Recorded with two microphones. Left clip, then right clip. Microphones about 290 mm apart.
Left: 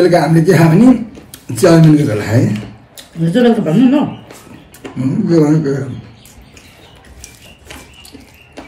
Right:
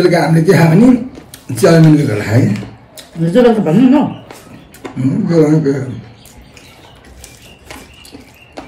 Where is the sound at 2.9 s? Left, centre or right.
Centre.